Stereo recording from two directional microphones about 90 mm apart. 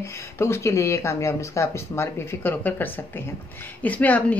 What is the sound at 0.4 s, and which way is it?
Speech, 35° left (ahead or behind).